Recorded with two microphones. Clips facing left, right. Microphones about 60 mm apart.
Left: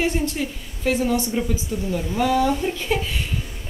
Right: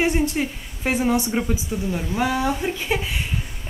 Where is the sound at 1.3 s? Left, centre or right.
Right.